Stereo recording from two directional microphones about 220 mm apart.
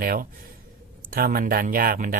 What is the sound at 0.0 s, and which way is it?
Speech, 40° right (ahead or behind).